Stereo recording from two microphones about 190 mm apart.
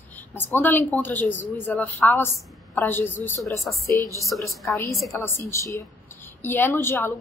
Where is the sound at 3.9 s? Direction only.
20° right (ahead or behind).